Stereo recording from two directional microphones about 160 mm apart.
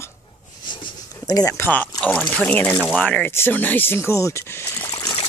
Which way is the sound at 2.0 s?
10° left (ahead or behind).